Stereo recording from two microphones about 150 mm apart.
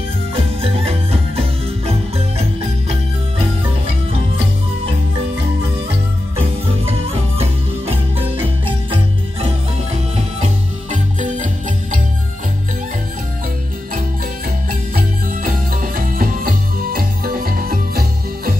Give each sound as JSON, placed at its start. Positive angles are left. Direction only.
{"t": 0.6, "sound": "music", "side_deg": -40}
{"t": 7.3, "sound": "music", "side_deg": -40}
{"t": 10.1, "sound": "music", "side_deg": -55}
{"t": 14.7, "sound": "music", "side_deg": -70}